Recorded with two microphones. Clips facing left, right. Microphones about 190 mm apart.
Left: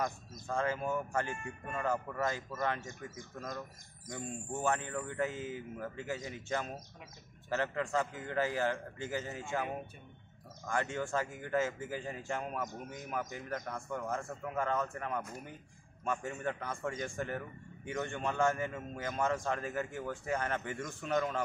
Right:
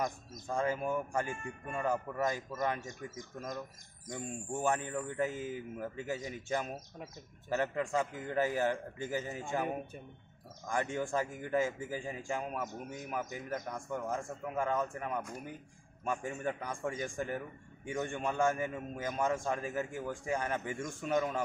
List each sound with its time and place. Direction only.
0.0 s a man's voice: 15° right (ahead or behind)